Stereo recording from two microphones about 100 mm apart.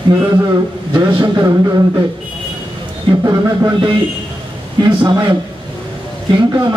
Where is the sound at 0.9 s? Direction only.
45° right (ahead or behind).